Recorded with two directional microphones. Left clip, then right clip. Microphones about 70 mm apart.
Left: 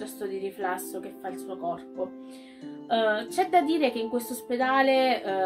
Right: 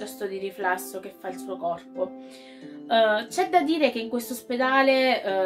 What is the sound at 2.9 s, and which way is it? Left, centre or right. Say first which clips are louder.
A woman's voice: right 4 dB; left.